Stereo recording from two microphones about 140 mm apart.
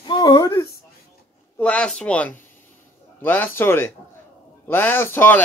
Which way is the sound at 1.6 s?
5° left (ahead or behind).